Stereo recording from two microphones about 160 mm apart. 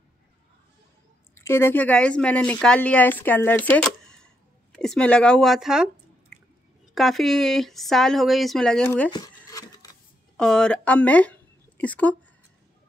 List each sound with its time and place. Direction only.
1.3 s speech: 15° left (ahead or behind); by 5.9 s 5° right (ahead or behind)
7.0 s speech: centre (ahead or behind)
9.1 s a sound: 20° left (ahead or behind)
10.3 s speech: 5° left (ahead or behind)